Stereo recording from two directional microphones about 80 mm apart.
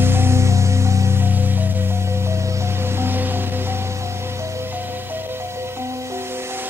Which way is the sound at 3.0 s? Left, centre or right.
Right.